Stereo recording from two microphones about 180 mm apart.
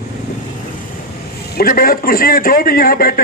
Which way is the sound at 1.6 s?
55° left (ahead or behind).